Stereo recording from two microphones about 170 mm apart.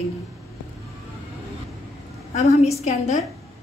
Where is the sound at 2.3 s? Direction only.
40° left (ahead or behind).